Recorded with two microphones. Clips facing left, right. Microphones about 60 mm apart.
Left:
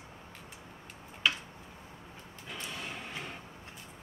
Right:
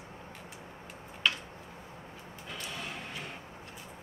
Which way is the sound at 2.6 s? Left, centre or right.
Centre.